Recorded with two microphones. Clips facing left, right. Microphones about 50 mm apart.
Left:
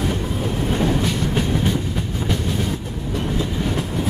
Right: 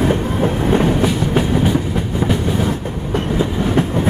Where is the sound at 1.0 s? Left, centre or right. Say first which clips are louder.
Right 5 dB; centre.